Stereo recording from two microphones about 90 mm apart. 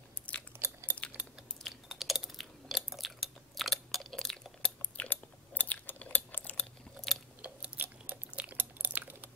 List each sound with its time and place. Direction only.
0.6 s a sound: 30° right (ahead or behind)
1.6 s chewing: centre (ahead or behind); by 6.6 s 15° left (ahead or behind)
7.0 s chewing: centre (ahead or behind)
7.4 s chewing: 15° right (ahead or behind)